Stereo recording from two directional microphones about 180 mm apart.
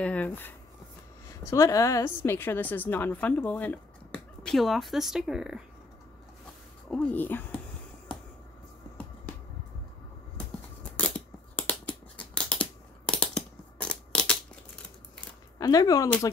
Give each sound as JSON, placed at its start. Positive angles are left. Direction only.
{"t": 0.0, "sound": "a woman's voice", "side_deg": 10}
{"t": 6.9, "sound": "a woman's voice", "side_deg": 5}
{"t": 10.8, "sound": "scissors", "side_deg": 5}
{"t": 15.6, "sound": "speech", "side_deg": 20}